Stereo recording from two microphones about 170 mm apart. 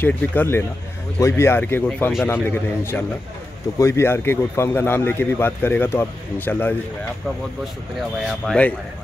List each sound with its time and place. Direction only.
0.0 s a man's voice: 10° left (ahead or behind)
8.3 s speech: 5° left (ahead or behind)